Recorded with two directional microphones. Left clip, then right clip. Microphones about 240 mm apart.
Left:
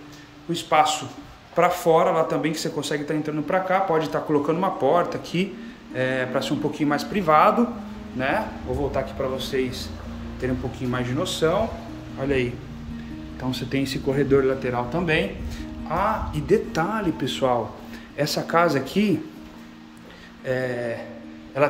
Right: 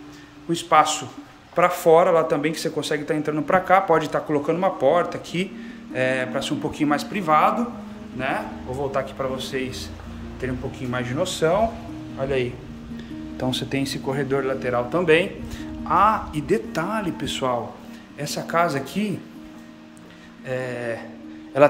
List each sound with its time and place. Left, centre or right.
0.5 s a man's voice: centre
13.4 s speech: right
14.1 s a man's voice: centre
20.4 s a man's voice: centre
21.6 s speech: right